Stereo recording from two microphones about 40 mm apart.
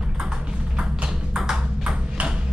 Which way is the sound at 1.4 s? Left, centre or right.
Centre.